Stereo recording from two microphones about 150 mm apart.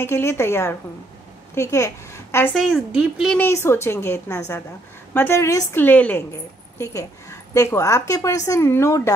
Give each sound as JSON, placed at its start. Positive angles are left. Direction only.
{"t": 0.0, "sound": "a woman's voice", "side_deg": 15}
{"t": 2.5, "sound": "a woman's voice", "side_deg": -5}
{"t": 3.3, "sound": "a woman's voice", "side_deg": 15}